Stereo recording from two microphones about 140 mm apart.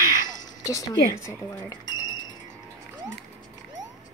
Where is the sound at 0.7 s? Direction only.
25° left (ahead or behind).